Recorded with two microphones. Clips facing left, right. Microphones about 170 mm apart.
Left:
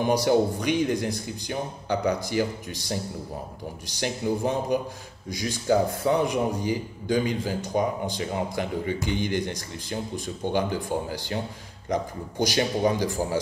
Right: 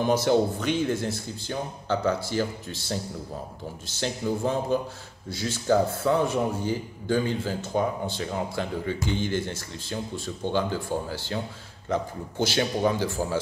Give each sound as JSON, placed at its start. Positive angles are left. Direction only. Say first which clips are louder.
{"t": 0.0, "sound": "a man's voice", "louder": "left 1 dB", "side_deg": 15}